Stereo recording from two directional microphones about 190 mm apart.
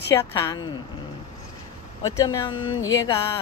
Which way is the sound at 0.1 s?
20° left (ahead or behind).